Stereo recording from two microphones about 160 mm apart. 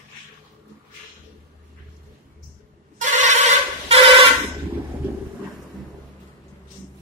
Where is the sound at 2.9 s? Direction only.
50° right (ahead or behind).